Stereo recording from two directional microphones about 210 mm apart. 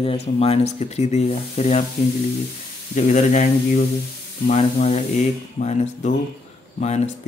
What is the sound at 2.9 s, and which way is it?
Speech, 35° left (ahead or behind).